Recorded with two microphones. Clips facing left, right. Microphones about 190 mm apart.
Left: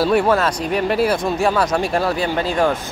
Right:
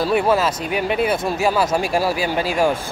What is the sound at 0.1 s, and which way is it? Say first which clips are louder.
Speech: left 1 dB; centre (ahead or behind).